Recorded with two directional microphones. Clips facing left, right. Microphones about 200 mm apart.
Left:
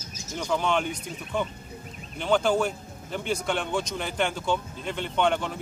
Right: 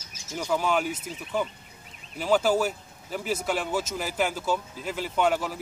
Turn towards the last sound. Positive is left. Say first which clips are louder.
# even
turn(degrees=-5)  # may be behind; listen again after turning